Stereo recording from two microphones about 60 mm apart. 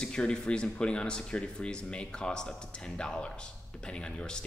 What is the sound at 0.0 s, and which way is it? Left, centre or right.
Speech, centre.